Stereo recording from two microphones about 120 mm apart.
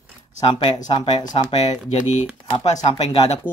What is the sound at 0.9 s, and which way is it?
Speech, 40° left (ahead or behind).